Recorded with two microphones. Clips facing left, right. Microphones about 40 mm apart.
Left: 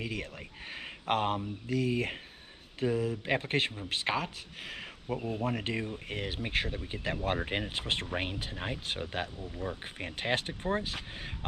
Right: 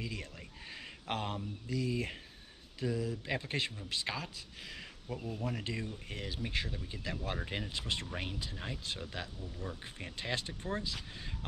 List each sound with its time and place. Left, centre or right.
0.0 s speech: left